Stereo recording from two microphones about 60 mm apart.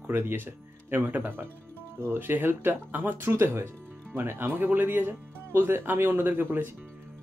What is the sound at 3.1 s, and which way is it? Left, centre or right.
Speech, right.